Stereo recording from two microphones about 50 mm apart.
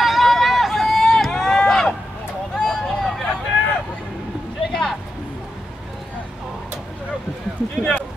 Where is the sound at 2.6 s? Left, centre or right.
Centre.